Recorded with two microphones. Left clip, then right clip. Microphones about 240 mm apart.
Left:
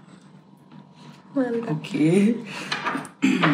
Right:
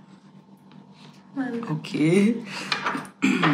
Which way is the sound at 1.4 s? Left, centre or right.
Centre.